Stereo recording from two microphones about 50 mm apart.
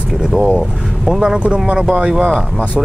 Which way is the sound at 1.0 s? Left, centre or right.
Centre.